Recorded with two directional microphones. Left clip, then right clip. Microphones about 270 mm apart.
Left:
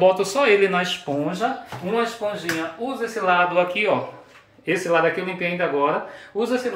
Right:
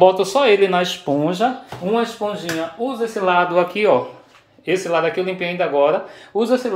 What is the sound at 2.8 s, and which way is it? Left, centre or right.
Speech, right.